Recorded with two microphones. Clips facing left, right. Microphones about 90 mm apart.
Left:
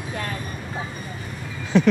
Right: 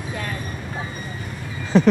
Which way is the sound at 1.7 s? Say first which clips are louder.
Right 2 dB; 35° right (ahead or behind).